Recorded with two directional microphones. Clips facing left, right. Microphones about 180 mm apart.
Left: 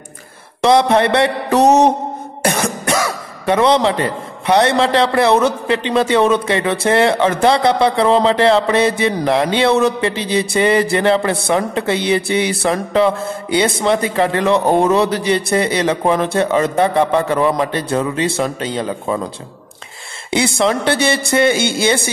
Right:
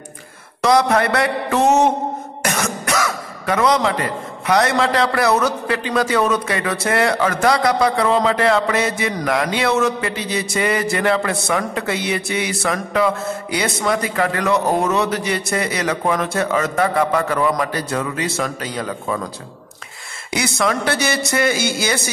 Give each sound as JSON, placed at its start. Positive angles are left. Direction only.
{"t": 0.6, "sound": "speech", "side_deg": 30}
{"t": 20.2, "sound": "speech", "side_deg": 30}